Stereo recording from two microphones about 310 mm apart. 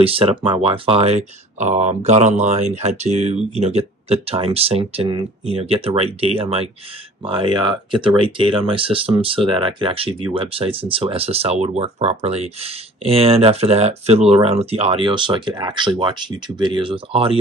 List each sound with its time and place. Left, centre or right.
0.0 s speech: centre